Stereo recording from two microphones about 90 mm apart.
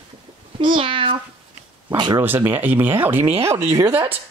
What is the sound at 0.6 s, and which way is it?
Meow, 65° right (ahead or behind).